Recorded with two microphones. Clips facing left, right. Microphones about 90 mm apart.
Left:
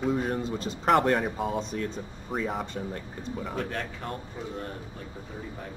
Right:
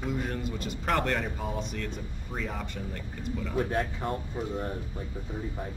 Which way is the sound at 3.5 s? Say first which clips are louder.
Right 8 dB; 15° right (ahead or behind).